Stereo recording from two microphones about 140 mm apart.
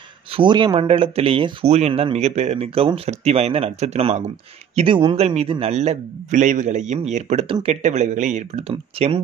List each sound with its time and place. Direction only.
0.3 s speech: 35° right (ahead or behind); by 4.3 s 50° right (ahead or behind)
4.7 s speech: 40° right (ahead or behind); by 8.5 s 60° right (ahead or behind)
8.5 s speech: 45° right (ahead or behind)